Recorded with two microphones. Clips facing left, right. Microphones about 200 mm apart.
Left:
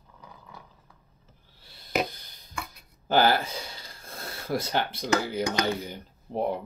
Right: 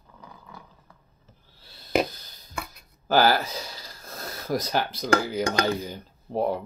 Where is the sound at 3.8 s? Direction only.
40° right (ahead or behind).